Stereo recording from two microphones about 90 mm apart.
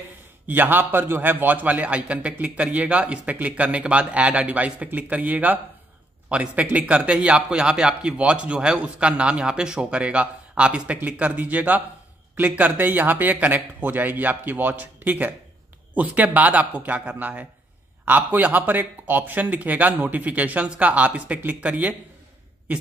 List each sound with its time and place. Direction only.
0.5 s a man's voice: 20° right (ahead or behind)